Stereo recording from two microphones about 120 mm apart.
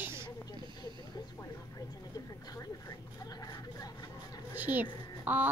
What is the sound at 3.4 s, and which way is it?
Hubbub, 30° left (ahead or behind).